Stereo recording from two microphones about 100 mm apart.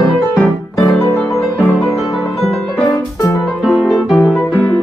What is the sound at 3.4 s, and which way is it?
Music, 5° left (ahead or behind).